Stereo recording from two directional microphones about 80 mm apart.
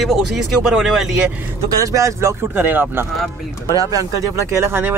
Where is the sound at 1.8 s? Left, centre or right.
Right.